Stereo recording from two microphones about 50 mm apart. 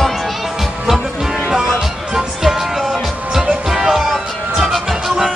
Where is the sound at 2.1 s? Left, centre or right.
Centre.